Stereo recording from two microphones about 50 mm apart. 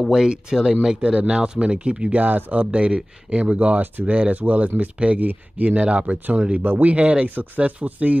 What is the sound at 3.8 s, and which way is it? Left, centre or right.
Speech, right.